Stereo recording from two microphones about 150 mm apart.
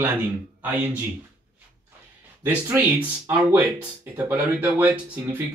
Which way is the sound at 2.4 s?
15° right (ahead or behind).